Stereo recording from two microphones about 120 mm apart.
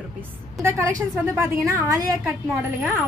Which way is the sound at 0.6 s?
25° right (ahead or behind).